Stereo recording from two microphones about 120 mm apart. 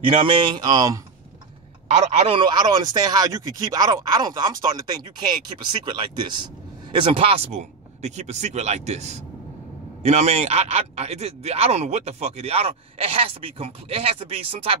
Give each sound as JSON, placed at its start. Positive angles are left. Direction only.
{"t": 0.2, "sound": "speech", "side_deg": -40}
{"t": 1.9, "sound": "speech", "side_deg": -65}
{"t": 2.3, "sound": "speech", "side_deg": -40}
{"t": 5.7, "sound": "speech", "side_deg": -40}
{"t": 7.0, "sound": "speech", "side_deg": -55}